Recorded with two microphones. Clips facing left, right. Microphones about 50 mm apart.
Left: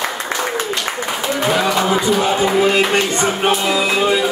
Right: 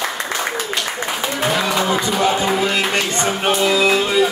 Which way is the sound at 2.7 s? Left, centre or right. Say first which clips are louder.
Left 4 dB; centre.